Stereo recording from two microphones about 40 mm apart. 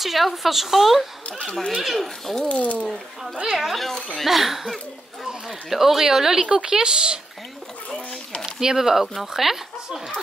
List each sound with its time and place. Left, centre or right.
0.0 s a woman's voice: centre
1.4 s speech: left
1.8 s a woman's voice: centre
2.4 s speech: left
3.4 s a woman's voice: centre
6.4 s speech: right
8.5 s speech: centre